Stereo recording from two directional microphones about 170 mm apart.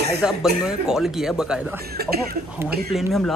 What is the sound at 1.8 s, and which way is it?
Speech, 65° right (ahead or behind).